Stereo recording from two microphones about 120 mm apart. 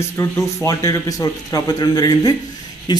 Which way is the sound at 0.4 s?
25° left (ahead or behind).